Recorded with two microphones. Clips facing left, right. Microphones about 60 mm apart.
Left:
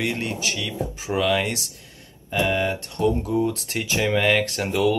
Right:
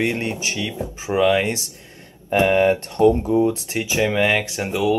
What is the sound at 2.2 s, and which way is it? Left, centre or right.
Speech, right.